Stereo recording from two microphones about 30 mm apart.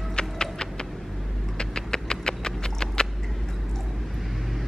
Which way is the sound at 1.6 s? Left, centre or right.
Left.